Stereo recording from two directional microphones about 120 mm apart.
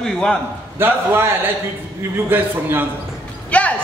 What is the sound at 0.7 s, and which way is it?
Speech, 20° right (ahead or behind).